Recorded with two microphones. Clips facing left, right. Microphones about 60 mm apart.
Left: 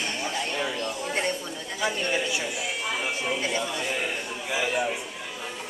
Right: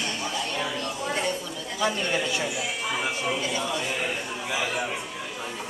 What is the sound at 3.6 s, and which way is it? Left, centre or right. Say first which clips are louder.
Speech: right 1 dB; centre.